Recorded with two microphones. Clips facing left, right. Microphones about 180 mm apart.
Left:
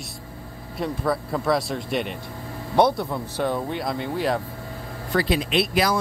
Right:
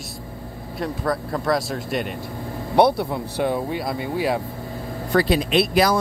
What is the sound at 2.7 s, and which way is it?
Speech, 10° right (ahead or behind).